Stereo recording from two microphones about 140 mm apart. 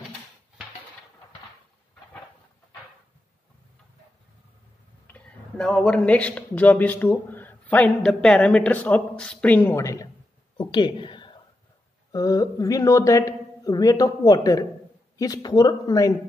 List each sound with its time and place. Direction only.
5.0 s speech: 10° left (ahead or behind)
9.6 s speech: 20° left (ahead or behind)
10.6 s a sound: 35° left (ahead or behind)
12.1 s speech: 25° left (ahead or behind)